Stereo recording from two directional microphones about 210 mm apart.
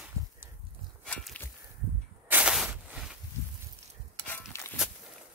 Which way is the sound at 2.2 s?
5° right (ahead or behind).